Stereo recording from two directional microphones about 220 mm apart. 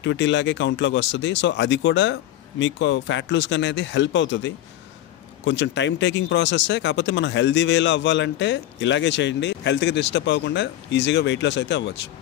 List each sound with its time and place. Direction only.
0.0 s speech: 55° left (ahead or behind)